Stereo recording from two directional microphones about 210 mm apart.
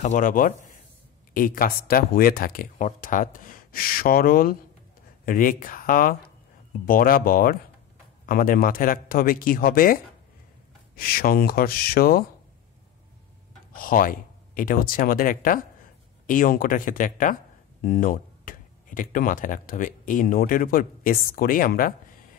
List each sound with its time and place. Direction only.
0.0 s speech: 35° left (ahead or behind)
11.0 s speech: 45° left (ahead or behind)
13.7 s speech: 40° left (ahead or behind)